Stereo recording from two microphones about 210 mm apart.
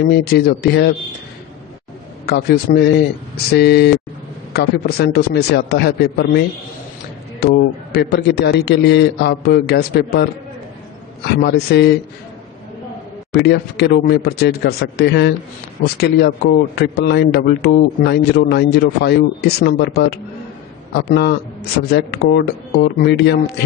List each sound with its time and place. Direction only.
0.1 s a man's voice: 50° left (ahead or behind)
2.2 s a man's voice: 50° left (ahead or behind)
7.9 s a man's voice: 50° left (ahead or behind)
11.4 s a man's voice: 50° left (ahead or behind)
13.3 s a man's voice: 50° left (ahead or behind)